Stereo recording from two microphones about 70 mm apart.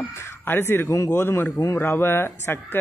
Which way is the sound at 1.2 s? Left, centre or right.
Left.